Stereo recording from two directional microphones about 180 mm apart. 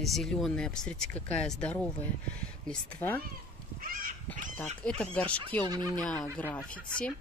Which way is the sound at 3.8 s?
50° right (ahead or behind).